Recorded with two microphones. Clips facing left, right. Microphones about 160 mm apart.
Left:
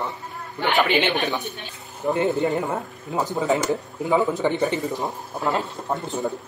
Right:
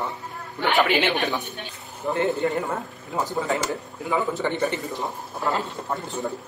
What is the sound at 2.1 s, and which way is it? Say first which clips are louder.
A man's voice: left 2 dB; 20° left (ahead or behind).